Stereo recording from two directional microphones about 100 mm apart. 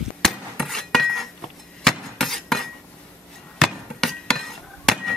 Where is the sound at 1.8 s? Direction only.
5° left (ahead or behind).